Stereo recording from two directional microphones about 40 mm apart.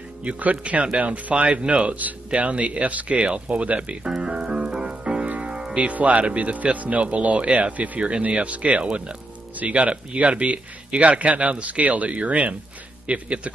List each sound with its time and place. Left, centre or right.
0.2 s speech: right
4.1 s music: right
5.8 s speech: right
8.0 s speech: right